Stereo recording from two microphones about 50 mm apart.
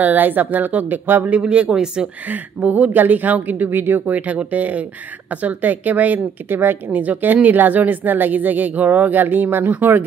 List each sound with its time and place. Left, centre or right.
0.0 s speech: right
1.2 s speech: right
2.2 s speech: right
4.1 s speech: right